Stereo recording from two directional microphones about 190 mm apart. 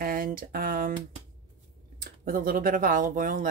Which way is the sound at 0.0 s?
50° right (ahead or behind).